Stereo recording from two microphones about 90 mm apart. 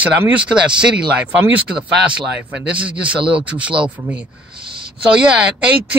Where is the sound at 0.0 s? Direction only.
15° right (ahead or behind).